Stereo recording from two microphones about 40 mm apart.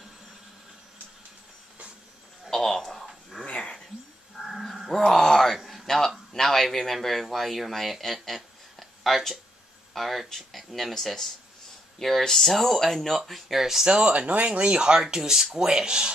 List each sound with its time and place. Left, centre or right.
2.5 s a sound: centre
2.9 s dog: centre
3.4 s dog: left
4.4 s dog: centre
4.9 s a sound: centre
5.7 s speech: centre
8.7 s a sound: centre
9.9 s speech: centre
13.8 s speech: right